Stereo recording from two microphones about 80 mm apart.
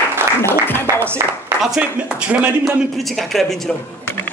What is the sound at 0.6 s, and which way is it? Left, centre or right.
Speech, left.